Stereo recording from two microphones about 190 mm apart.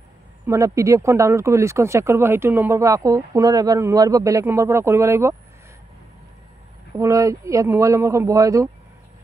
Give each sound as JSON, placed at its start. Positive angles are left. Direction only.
{"t": 0.5, "sound": "speech", "side_deg": -15}
{"t": 7.0, "sound": "speech", "side_deg": -15}